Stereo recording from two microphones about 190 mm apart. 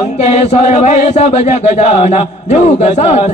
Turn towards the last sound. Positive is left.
turn(degrees=35)  # may be behind; listen again after turning